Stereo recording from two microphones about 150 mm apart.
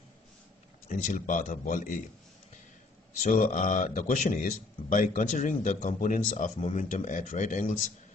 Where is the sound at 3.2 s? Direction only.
65° left (ahead or behind).